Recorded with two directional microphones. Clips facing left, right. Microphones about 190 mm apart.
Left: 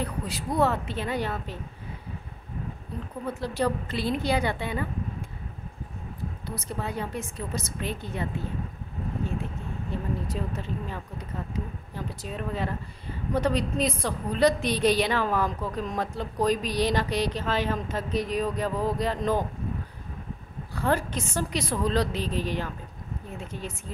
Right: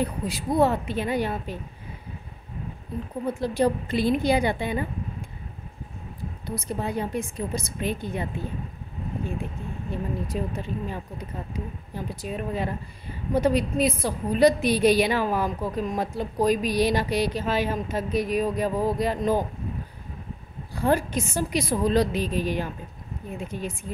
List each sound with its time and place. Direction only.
0.0 s a woman's voice: 10° right (ahead or behind)
3.3 s a woman's voice: 15° right (ahead or behind)
6.4 s a woman's voice: 15° right (ahead or behind)
10.2 s a woman's voice: 15° right (ahead or behind)
20.7 s a woman's voice: 15° right (ahead or behind)